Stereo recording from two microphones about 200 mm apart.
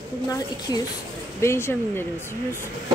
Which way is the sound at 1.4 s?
10° left (ahead or behind).